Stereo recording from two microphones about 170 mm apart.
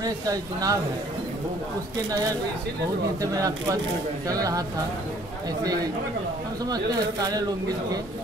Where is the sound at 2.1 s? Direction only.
20° right (ahead or behind).